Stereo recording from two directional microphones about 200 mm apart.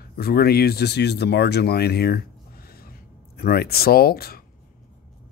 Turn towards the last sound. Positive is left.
turn(degrees=50)  # may be behind; listen again after turning